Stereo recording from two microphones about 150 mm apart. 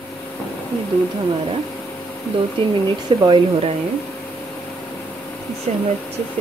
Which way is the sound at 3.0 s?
30° right (ahead or behind).